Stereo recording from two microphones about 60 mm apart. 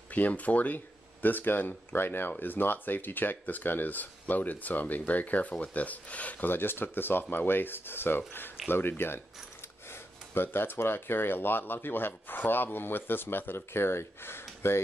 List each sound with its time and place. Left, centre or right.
0.1 s speech: left